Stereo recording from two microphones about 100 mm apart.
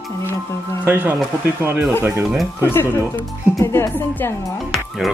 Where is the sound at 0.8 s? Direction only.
15° right (ahead or behind).